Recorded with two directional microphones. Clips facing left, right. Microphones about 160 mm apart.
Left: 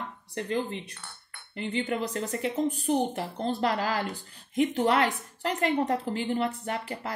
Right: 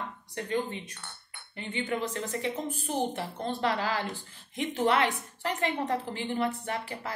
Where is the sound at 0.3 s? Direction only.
30° left (ahead or behind).